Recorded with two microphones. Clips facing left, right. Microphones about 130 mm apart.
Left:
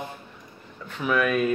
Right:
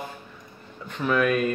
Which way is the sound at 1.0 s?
Centre (ahead or behind).